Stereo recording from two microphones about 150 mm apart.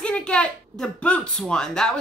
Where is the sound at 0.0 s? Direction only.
5° left (ahead or behind).